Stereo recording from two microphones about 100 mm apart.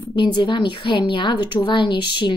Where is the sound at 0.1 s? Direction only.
50° left (ahead or behind).